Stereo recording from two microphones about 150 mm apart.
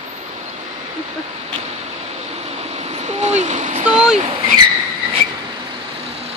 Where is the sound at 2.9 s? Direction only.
45° right (ahead or behind).